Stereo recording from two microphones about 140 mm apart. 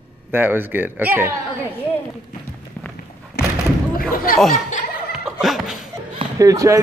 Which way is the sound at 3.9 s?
90° left.